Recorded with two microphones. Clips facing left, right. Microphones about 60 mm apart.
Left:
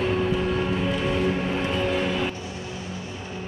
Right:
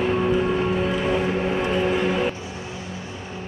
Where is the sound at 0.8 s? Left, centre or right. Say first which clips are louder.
Right 2 dB; centre.